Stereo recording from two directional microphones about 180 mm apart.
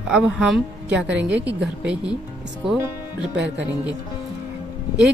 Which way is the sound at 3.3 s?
80° right.